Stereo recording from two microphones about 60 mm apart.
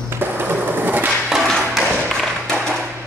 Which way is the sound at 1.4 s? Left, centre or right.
Centre.